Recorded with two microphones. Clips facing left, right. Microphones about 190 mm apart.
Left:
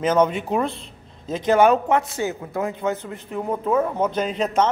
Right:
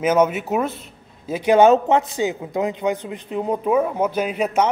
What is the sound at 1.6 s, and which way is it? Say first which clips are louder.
A man's voice: right 3 dB; 20° right (ahead or behind).